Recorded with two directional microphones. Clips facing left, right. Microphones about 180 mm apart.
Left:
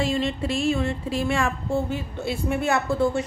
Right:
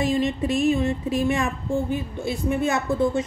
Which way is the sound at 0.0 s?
15° right (ahead or behind).